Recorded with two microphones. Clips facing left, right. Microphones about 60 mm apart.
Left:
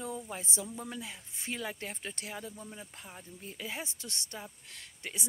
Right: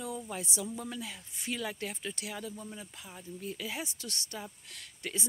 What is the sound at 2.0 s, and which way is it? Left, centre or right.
Speech, left.